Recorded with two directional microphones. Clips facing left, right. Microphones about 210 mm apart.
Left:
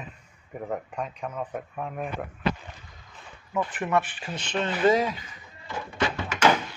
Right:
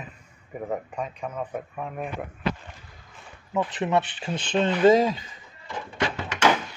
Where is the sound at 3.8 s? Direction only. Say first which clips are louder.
Right 1 dB; 20° right (ahead or behind).